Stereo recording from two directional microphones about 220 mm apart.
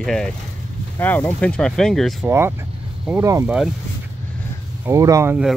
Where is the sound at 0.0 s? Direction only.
Centre (ahead or behind).